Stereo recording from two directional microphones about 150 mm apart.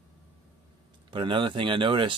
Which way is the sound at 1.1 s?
35° right (ahead or behind).